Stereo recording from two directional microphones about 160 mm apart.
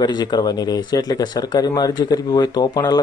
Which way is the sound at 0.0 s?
25° left (ahead or behind).